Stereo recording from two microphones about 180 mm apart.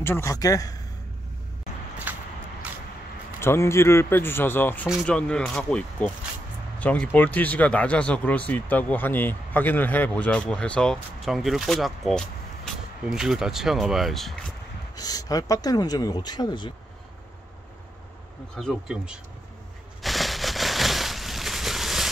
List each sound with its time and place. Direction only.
0.0 s speech: 15° left (ahead or behind)
2.1 s a sound: 10° right (ahead or behind)
3.3 s speech: 15° left (ahead or behind)
4.8 s speech: centre (ahead or behind)
15.0 s speech: 20° left (ahead or behind)
18.6 s speech: centre (ahead or behind)
20.0 s a sound: centre (ahead or behind)